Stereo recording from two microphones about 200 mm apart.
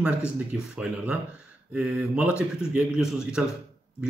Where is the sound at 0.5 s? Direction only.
5° right (ahead or behind).